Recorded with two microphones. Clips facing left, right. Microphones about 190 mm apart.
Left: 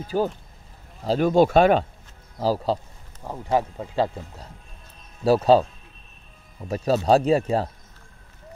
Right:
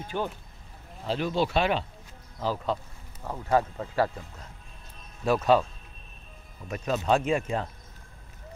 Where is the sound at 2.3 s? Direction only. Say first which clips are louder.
Left 6 dB; 35° left (ahead or behind).